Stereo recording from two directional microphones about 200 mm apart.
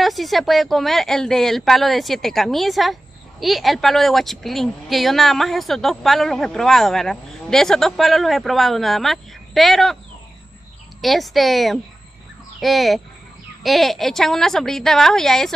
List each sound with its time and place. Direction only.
0.0 s a woman's voice: centre (ahead or behind)
11.0 s a woman's voice: centre (ahead or behind)